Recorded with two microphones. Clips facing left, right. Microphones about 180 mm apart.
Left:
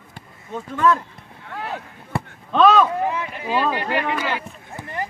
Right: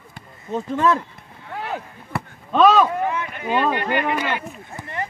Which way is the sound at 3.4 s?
5° left (ahead or behind).